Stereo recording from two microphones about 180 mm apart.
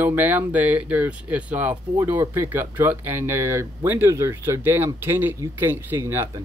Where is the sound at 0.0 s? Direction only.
10° right (ahead or behind).